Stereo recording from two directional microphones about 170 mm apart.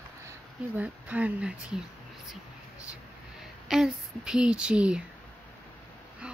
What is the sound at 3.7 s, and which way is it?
Speech, 5° right (ahead or behind).